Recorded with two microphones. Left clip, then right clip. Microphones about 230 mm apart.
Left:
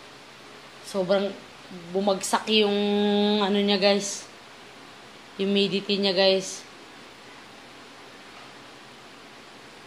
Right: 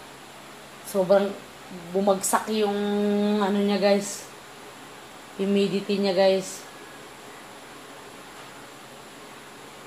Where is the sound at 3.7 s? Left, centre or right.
Centre.